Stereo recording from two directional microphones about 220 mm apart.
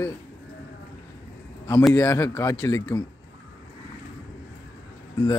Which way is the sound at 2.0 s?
15° left (ahead or behind).